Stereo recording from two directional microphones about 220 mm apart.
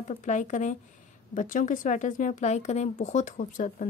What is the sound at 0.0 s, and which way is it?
Speech, 35° left (ahead or behind).